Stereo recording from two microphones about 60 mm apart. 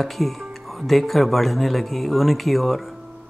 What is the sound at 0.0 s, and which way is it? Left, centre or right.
Speech, centre.